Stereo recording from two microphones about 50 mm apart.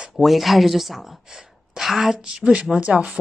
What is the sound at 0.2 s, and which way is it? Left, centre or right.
A woman's voice, centre.